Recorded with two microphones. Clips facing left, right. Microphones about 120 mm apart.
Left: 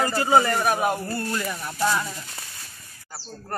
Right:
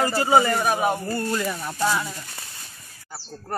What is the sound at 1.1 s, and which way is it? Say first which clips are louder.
Speech: right 3 dB; 25° right (ahead or behind).